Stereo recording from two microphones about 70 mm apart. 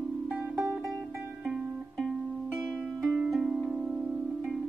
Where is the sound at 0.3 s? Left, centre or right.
Centre.